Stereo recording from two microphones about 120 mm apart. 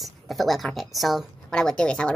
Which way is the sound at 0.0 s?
Centre (ahead or behind).